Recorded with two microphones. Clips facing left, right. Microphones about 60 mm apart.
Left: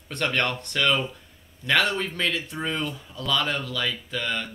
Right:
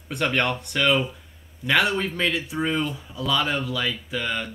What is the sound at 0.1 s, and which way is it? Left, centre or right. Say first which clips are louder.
Speech: right 2 dB; centre.